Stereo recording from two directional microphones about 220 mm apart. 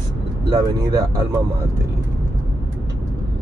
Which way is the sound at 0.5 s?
20° right (ahead or behind).